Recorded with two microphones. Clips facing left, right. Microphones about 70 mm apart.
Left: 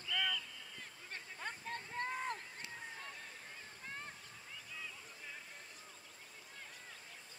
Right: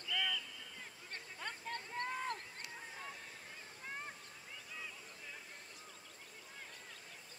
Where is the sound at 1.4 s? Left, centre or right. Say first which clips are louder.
Even; centre.